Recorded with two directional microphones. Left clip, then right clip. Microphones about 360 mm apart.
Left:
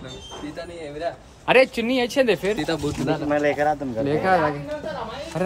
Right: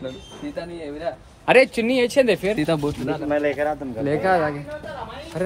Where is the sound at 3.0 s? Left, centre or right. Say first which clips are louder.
Left 2 dB; left.